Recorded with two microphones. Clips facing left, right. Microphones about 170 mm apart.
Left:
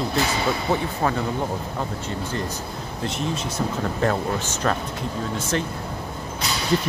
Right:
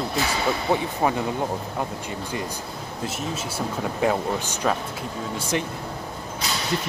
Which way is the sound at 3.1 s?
5° right (ahead or behind).